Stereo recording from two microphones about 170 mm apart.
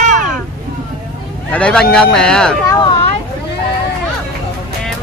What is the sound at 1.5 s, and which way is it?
Speech, 5° left (ahead or behind).